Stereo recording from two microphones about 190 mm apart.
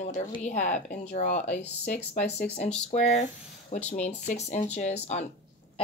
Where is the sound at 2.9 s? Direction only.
40° left (ahead or behind).